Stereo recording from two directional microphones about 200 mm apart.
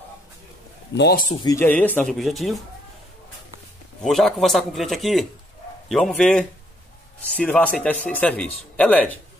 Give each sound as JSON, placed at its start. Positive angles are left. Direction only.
{"t": 0.9, "sound": "a man's voice", "side_deg": 50}
{"t": 1.3, "sound": "speech", "side_deg": 20}
{"t": 1.6, "sound": "speech", "side_deg": 10}
{"t": 4.0, "sound": "speech", "side_deg": 0}